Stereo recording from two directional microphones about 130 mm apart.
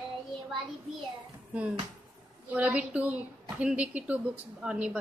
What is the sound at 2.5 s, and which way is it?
Speech, 10° right (ahead or behind).